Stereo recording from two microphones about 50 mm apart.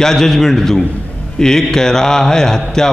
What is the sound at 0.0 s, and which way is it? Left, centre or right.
A man's voice, centre.